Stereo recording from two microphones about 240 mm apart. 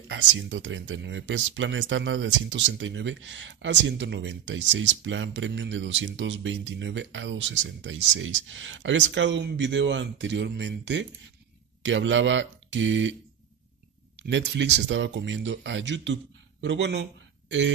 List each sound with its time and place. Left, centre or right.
0.1 s speech: right
14.2 s speech: right